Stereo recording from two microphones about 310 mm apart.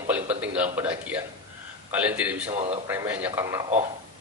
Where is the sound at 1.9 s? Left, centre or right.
Centre.